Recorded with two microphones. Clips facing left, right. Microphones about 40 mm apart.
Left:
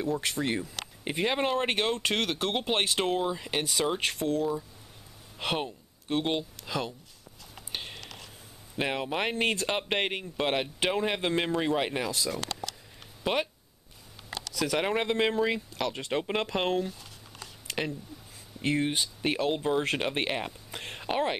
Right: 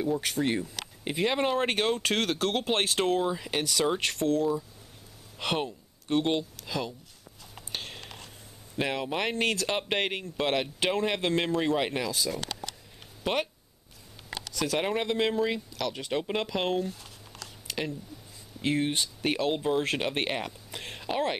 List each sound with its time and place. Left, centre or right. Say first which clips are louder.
0.0 s speech: right 2 dB; centre
7.7 s whispering: even; centre
8.7 s speech: even; centre
14.8 s speech: left 1 dB; centre
15.7 s speech: even; left
17.4 s a sound: left 1 dB; left
18.8 s speech: even; centre
20.4 s a sound: even; centre